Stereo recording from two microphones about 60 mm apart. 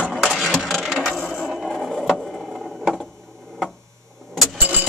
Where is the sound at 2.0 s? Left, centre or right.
Centre.